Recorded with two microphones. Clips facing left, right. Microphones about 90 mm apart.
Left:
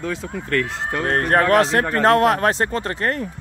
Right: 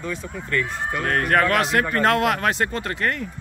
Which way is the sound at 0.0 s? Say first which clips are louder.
Left 3 dB; 80° left.